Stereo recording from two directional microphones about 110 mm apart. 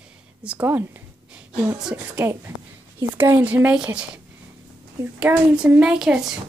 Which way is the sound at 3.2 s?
20° right (ahead or behind).